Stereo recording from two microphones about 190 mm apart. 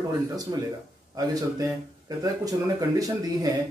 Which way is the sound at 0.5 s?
20° right (ahead or behind).